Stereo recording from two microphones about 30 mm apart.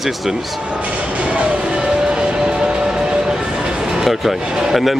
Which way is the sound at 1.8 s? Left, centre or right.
Right.